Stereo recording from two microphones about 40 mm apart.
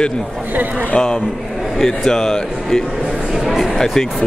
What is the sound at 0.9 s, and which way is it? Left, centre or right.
Speech, left.